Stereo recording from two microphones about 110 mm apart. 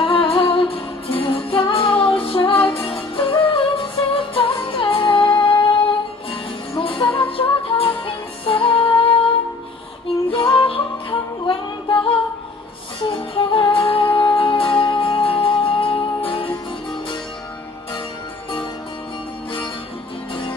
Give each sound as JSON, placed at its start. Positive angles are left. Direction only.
{"t": 0.0, "sound": "music", "side_deg": 50}
{"t": 10.5, "sound": "music", "side_deg": 50}